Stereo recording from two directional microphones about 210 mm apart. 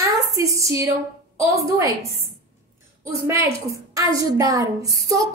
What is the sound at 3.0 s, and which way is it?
A woman's voice, 15° right (ahead or behind).